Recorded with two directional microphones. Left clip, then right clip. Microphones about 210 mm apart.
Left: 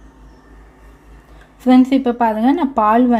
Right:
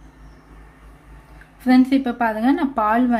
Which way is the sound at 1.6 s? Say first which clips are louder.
Left 4 dB; 20° left (ahead or behind).